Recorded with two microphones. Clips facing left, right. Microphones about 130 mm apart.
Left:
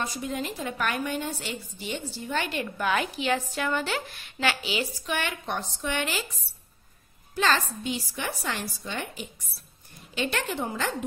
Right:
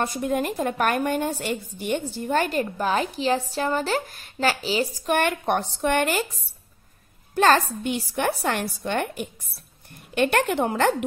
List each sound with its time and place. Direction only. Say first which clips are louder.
0.0 s a woman's voice: right 7 dB; 55° right (ahead or behind)
7.3 s a woman's voice: right 7 dB; 50° right (ahead or behind)